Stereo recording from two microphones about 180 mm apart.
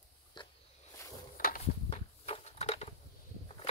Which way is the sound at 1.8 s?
35° left (ahead or behind).